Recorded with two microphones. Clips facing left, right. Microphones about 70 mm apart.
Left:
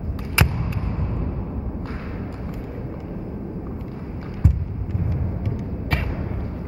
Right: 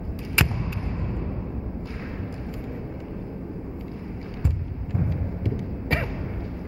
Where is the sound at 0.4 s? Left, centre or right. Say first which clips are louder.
Left 2 dB; centre.